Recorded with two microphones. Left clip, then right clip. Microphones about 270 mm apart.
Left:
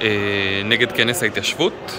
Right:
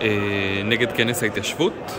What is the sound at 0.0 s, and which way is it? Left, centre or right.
Speech, centre.